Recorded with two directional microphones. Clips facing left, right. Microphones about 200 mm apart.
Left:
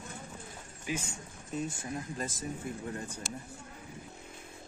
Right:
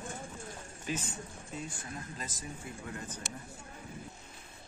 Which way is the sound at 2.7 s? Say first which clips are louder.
Left 6 dB; 50° left (ahead or behind).